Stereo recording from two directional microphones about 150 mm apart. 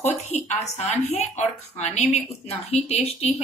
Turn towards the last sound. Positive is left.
turn(degrees=45)  # may be behind; listen again after turning